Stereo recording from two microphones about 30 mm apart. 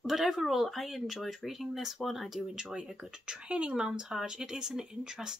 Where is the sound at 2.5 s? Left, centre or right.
Right.